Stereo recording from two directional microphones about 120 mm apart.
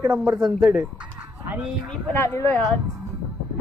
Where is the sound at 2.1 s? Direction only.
20° left (ahead or behind).